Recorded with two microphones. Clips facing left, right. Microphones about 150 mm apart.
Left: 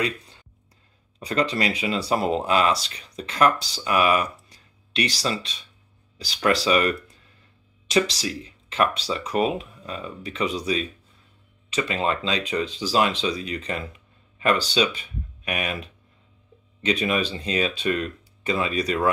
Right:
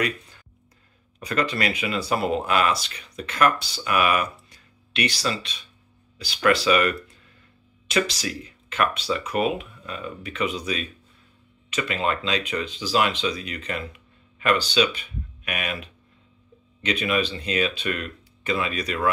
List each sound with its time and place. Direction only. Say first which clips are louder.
1.2 s speech: left 1 dB; 30° left (ahead or behind)
7.9 s speech: left 2 dB; 35° left (ahead or behind)